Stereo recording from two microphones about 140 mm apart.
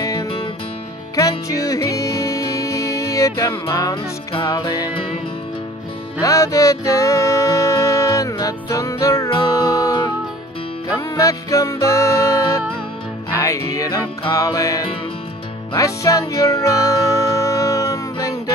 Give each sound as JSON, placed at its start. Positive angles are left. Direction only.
{"t": 0.0, "sound": "music", "side_deg": 25}
{"t": 6.2, "sound": "music", "side_deg": 20}